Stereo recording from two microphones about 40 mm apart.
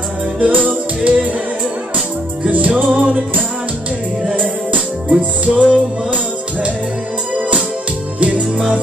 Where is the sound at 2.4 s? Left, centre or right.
Right.